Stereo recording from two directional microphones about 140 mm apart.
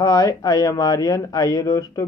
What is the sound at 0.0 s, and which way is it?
Speech, 25° left (ahead or behind).